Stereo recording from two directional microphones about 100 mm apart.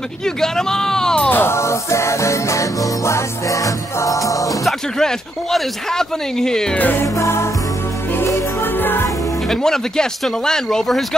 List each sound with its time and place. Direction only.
0.2 s speech: 5° left (ahead or behind)
1.3 s music: 25° left (ahead or behind)
4.6 s speech: 5° left (ahead or behind)
6.8 s music: 20° left (ahead or behind)
9.5 s speech: 5° left (ahead or behind)